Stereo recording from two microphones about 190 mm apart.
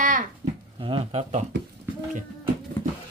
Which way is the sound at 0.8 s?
30° right (ahead or behind).